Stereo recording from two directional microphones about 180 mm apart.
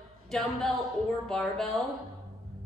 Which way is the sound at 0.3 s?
Centre (ahead or behind).